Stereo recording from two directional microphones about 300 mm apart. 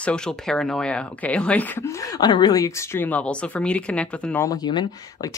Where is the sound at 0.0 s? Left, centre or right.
Centre.